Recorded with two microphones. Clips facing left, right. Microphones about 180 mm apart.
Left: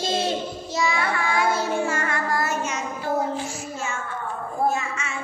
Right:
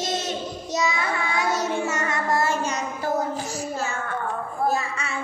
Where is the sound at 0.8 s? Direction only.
20° right (ahead or behind).